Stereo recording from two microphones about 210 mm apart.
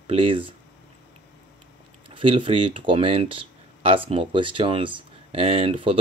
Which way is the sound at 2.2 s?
25° right (ahead or behind).